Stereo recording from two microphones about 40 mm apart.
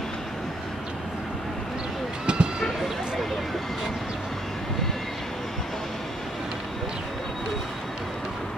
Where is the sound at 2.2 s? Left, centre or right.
Right.